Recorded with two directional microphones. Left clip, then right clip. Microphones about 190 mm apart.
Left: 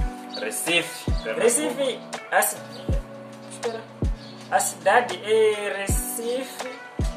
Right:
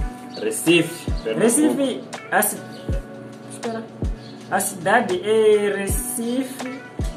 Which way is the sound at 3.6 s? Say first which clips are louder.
Right 1 dB; centre (ahead or behind).